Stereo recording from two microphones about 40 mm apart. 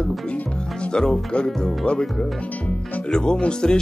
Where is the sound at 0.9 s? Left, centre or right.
Centre.